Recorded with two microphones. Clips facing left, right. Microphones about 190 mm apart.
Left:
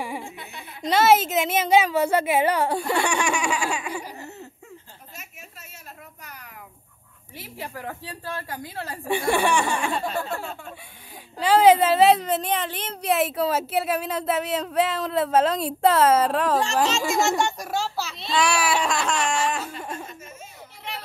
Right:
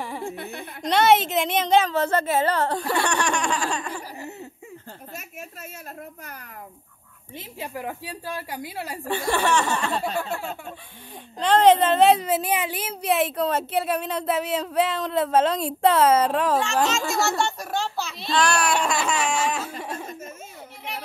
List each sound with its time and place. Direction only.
0.0 s a sound: 10° left (ahead or behind)
0.4 s speech: 55° right (ahead or behind)
0.8 s a woman's voice: centre (ahead or behind)
7.3 s a woman's voice: 15° right (ahead or behind)
9.0 s a woman's voice: 15° left (ahead or behind)
11.3 s a woman's voice: 5° left (ahead or behind)
17.0 s a woman's voice: 15° left (ahead or behind); by 19.7 s centre (ahead or behind)